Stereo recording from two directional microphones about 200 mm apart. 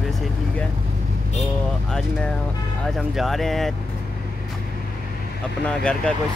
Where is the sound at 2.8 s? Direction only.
Centre (ahead or behind).